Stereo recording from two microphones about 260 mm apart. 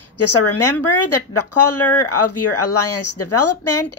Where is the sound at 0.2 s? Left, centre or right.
Left.